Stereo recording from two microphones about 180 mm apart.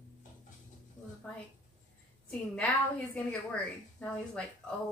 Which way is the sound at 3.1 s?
5° left (ahead or behind).